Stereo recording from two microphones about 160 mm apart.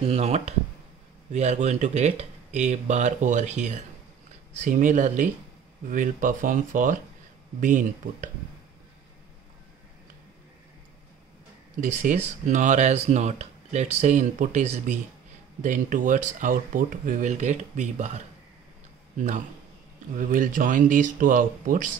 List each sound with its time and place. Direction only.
0.0 s speech: 40° right (ahead or behind)
11.8 s a man's voice: 55° right (ahead or behind)